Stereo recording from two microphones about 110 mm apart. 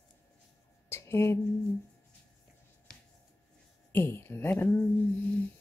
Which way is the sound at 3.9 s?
20° left (ahead or behind).